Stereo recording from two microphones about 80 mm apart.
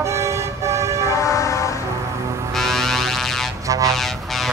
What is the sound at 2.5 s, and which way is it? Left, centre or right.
Music, centre.